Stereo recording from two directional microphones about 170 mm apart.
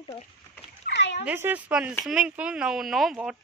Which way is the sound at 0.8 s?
90° left.